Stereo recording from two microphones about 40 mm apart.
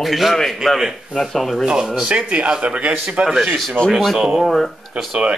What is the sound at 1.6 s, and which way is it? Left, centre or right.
Speech, centre.